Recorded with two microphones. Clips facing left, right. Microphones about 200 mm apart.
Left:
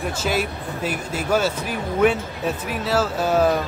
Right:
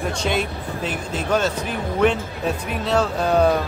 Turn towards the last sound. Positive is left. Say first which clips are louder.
# right 1 dB
turn(degrees=5)  # may be behind; listen again after turning